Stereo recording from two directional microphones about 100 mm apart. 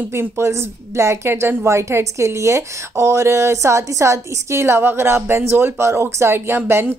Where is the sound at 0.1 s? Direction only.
25° right (ahead or behind).